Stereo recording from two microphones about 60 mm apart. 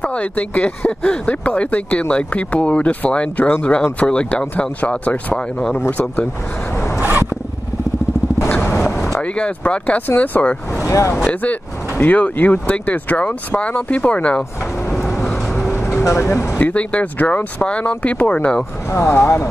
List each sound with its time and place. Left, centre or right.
0.0 s speech: left
7.0 s zipper: right
8.5 s a sound: left
9.2 s speech: centre
10.9 s speech: left
12.0 s speech: left
15.7 s vehicle: left
16.5 s speech: left
18.9 s speech: left